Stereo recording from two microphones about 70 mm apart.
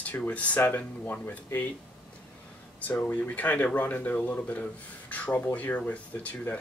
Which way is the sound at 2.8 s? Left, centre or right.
Left.